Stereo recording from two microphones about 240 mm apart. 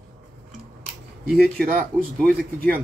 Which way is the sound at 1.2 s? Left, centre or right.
Right.